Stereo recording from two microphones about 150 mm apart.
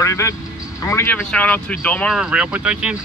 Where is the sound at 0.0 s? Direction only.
20° left (ahead or behind).